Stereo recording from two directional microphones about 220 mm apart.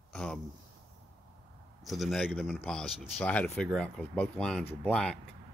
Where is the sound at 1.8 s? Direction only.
Centre (ahead or behind).